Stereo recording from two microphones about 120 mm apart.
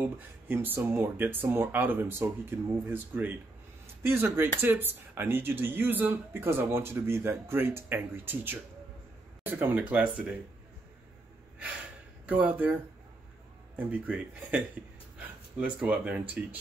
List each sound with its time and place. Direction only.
0.0 s speech: 15° right (ahead or behind)
12.3 s speech: 15° right (ahead or behind)
13.7 s speech: 10° right (ahead or behind)